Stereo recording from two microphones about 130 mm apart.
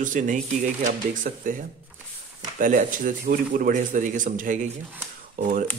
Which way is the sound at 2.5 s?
90° right.